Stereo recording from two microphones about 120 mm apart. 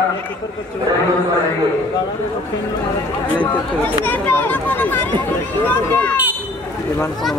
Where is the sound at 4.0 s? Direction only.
15° left (ahead or behind).